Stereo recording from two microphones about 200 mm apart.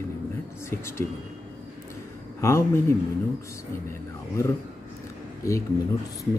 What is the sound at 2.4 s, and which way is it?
Speech, 15° left (ahead or behind).